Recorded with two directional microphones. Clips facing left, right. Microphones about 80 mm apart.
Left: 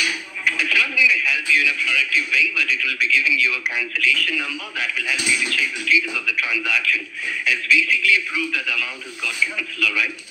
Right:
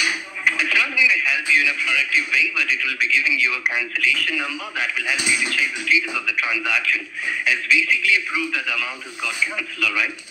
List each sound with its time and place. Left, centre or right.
0.0 s speech: right